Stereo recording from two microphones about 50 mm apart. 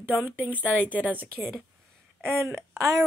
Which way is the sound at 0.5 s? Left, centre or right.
Left.